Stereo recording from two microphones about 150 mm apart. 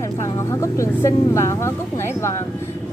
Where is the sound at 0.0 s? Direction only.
20° left (ahead or behind).